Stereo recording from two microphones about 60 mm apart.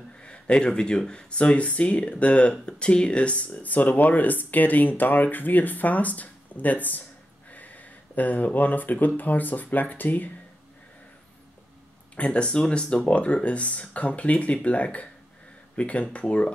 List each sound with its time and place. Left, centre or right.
0.2 s speech: centre
12.2 s speech: centre